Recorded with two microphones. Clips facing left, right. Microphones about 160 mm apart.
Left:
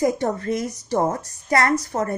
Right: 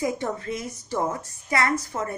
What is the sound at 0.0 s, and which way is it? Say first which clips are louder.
A woman's voice: left 6 dB; 45° left (ahead or behind).